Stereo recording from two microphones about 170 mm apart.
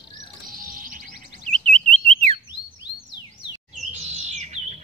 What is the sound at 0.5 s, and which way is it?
Music, 55° right (ahead or behind).